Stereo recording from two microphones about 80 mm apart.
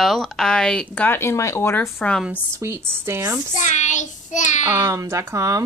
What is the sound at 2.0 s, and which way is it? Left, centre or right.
Speech, centre.